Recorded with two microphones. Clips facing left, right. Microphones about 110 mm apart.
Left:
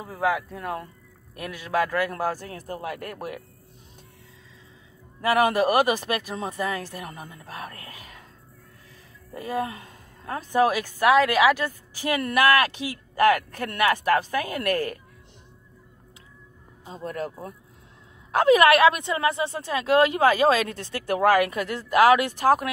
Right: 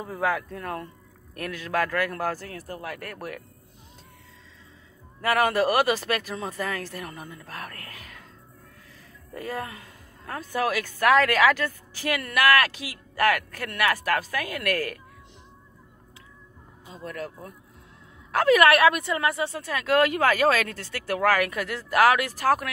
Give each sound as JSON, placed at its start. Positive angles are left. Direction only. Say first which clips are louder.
{"t": 0.0, "sound": "speech", "louder": "left 2 dB", "side_deg": 10}
{"t": 5.2, "sound": "speech", "louder": "left 2 dB", "side_deg": 15}
{"t": 9.3, "sound": "a woman's voice", "louder": "left 4 dB", "side_deg": 20}
{"t": 12.2, "sound": "speech", "louder": "left 1 dB", "side_deg": 25}
{"t": 16.8, "sound": "speech", "louder": "left 4 dB", "side_deg": 35}
{"t": 18.3, "sound": "speech", "louder": "left 2 dB", "side_deg": 20}